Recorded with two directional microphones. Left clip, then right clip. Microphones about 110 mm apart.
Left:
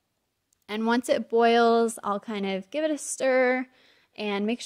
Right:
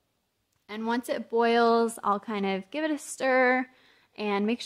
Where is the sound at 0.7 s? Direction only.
90° left.